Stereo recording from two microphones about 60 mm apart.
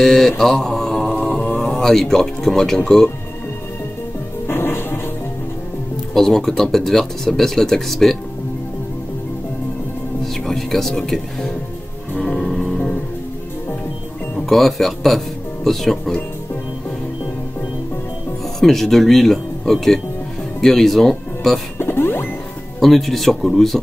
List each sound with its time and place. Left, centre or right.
0.0 s mantra: centre
1.2 s a sound: centre
4.5 s music: left
6.1 s speech: centre
10.2 s speech: centre
12.2 s music: centre
14.4 s speech: centre
18.6 s speech: centre
21.7 s music: left
22.8 s speech: centre